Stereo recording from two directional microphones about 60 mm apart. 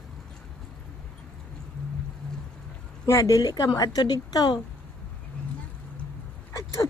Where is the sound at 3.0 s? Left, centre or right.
Left.